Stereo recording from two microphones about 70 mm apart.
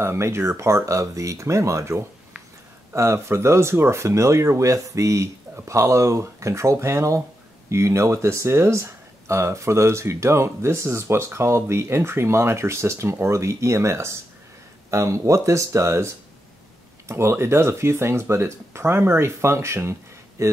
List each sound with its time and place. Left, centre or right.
0.0 s speech: right